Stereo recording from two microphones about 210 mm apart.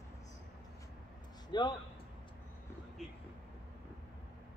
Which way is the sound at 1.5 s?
20° left (ahead or behind).